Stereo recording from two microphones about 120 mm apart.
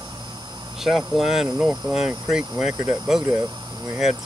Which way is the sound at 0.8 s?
5° right (ahead or behind).